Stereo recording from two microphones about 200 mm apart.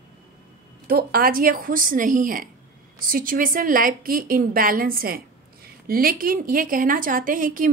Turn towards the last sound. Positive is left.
turn(degrees=-45)  # may be behind; listen again after turning